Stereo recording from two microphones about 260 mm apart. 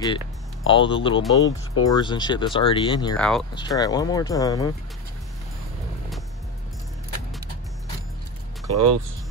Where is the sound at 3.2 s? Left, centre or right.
Centre.